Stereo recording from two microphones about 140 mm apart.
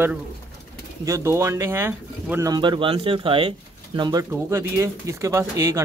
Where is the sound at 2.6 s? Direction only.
35° right (ahead or behind).